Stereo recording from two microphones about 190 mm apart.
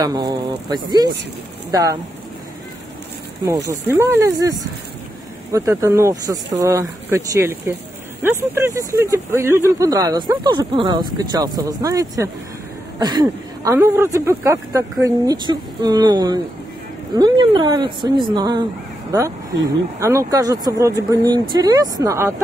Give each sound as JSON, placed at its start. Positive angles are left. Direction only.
{"t": 0.0, "sound": "speech", "side_deg": -20}
{"t": 3.4, "sound": "speech", "side_deg": -15}